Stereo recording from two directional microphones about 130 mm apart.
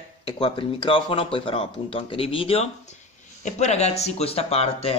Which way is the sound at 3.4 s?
60° left (ahead or behind).